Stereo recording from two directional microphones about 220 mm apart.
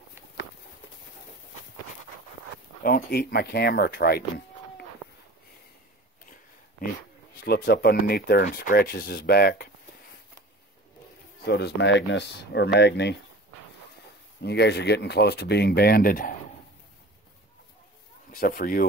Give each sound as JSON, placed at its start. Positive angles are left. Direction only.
{"t": 2.8, "sound": "speech", "side_deg": 45}
{"t": 5.0, "sound": "a sound", "side_deg": -5}
{"t": 7.4, "sound": "speech", "side_deg": 45}
{"t": 11.4, "sound": "speech", "side_deg": 50}
{"t": 14.4, "sound": "speech", "side_deg": 50}
{"t": 18.3, "sound": "speech", "side_deg": 40}